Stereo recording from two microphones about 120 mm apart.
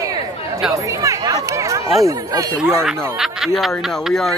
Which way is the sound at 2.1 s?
25° right (ahead or behind).